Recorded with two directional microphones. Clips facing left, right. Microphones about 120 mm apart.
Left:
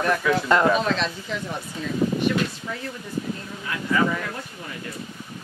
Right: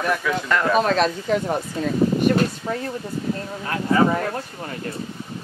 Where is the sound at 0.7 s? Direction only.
45° right (ahead or behind).